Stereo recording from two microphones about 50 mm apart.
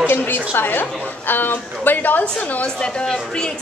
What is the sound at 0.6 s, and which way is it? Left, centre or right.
A woman's voice, left.